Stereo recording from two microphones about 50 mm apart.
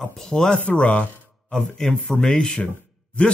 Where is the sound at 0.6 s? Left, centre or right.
Left.